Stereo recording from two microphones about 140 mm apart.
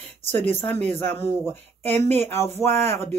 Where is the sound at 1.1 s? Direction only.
15° left (ahead or behind).